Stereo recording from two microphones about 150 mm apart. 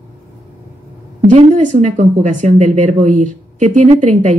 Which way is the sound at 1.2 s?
55° right (ahead or behind).